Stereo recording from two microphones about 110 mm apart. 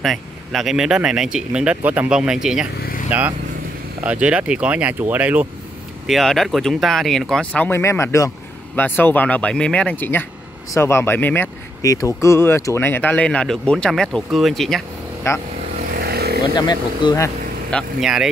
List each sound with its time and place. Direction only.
0.0 s speech: centre (ahead or behind)
3.1 s speech: 15° right (ahead or behind)
6.0 s speech: centre (ahead or behind)
7.8 s speech: 25° left (ahead or behind)
11.8 s speech: 30° left (ahead or behind); by 14.8 s centre (ahead or behind)
15.3 s speech: 25° left (ahead or behind)
16.5 s speech: 40° left (ahead or behind)
18.0 s speech: 5° right (ahead or behind)